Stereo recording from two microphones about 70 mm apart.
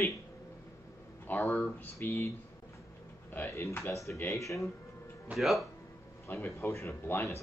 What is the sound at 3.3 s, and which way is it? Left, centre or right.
Speech, left.